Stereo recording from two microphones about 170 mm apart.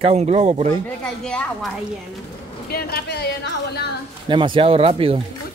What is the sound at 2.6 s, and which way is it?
Speech, 65° left (ahead or behind).